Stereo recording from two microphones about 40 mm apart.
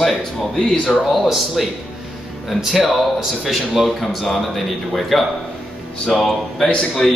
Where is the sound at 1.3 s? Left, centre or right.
Centre.